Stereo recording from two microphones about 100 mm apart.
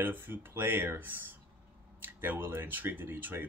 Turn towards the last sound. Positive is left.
turn(degrees=-20)  # may be behind; listen again after turning